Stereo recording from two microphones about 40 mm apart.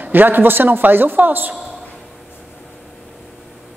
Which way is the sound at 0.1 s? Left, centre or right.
Right.